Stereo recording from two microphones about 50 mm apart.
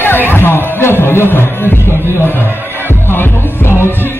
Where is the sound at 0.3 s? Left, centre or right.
Left.